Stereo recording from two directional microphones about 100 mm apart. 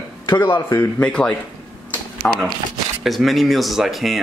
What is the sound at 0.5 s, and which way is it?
Speech, 25° left (ahead or behind).